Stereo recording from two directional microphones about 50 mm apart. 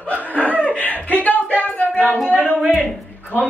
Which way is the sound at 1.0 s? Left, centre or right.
Left.